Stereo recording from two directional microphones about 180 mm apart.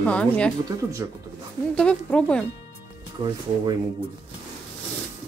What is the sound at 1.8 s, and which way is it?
Speech, 5° left (ahead or behind).